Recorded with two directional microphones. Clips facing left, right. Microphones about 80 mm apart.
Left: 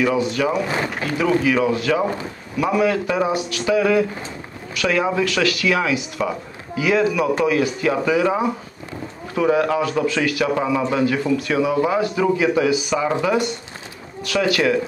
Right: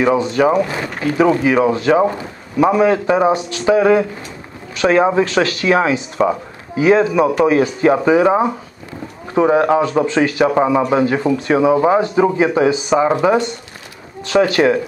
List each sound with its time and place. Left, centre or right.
0.0 s speech: right